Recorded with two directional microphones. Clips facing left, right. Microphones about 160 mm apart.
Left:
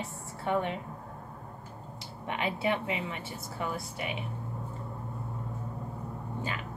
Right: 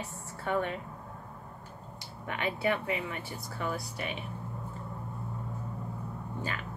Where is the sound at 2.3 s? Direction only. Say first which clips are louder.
Even; 25° left (ahead or behind).